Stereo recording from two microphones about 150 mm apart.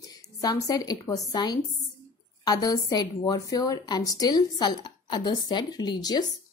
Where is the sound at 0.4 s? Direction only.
25° left (ahead or behind).